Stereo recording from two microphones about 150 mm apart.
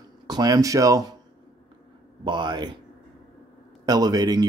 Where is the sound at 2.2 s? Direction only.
30° right (ahead or behind).